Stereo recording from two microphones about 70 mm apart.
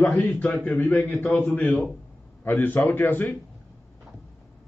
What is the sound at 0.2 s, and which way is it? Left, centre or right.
A man's voice, left.